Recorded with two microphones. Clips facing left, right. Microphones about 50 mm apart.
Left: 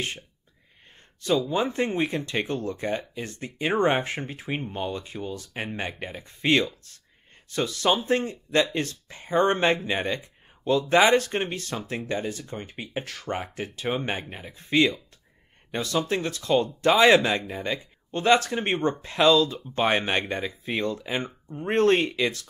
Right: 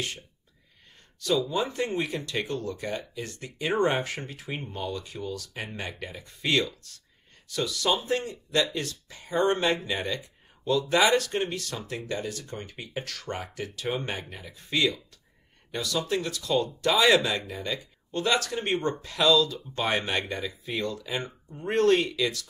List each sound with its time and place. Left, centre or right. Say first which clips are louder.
1.5 s speech: left 3 dB; left